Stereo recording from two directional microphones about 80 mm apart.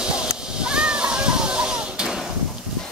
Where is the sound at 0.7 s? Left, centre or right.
Centre.